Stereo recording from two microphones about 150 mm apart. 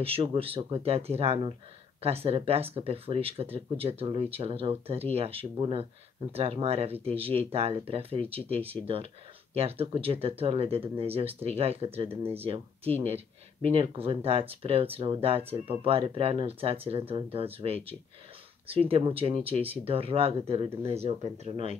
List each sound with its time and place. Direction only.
0.0 s speech: 40° right (ahead or behind)